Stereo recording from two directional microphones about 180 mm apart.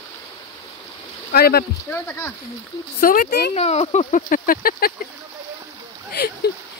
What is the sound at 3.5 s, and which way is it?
Speech, 35° left (ahead or behind).